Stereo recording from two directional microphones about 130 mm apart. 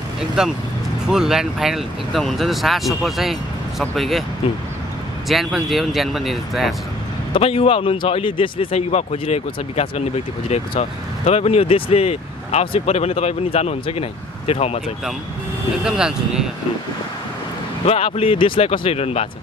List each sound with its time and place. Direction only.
0.4 s speech: 5° right (ahead or behind)
5.3 s speech: centre (ahead or behind)
7.3 s speech: 45° left (ahead or behind)
15.8 s speech: 5° right (ahead or behind)
17.8 s speech: 50° left (ahead or behind)